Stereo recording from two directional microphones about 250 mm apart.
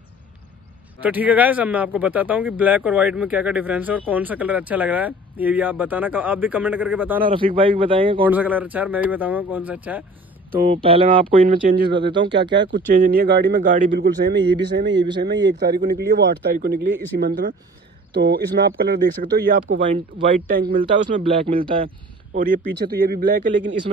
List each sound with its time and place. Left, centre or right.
1.0 s speech: centre
7.2 s speech: right
8.3 s speech: centre
10.5 s speech: right
10.8 s speech: right
11.4 s speech: right
20.1 s speech: right
20.4 s speech: right
20.8 s speech: right
22.3 s speech: right